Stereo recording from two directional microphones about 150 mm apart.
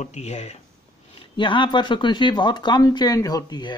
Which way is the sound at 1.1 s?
35° left (ahead or behind).